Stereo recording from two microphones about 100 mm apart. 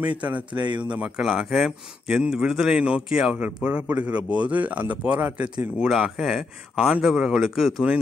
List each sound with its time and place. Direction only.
0.6 s speech: 50° right (ahead or behind)
0.9 s speech: 10° right (ahead or behind)